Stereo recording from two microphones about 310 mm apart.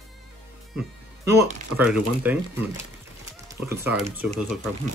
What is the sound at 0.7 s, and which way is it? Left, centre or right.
Speech, centre.